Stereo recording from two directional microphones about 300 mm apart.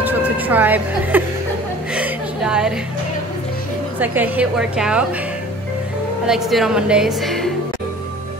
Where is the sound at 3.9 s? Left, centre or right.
Centre.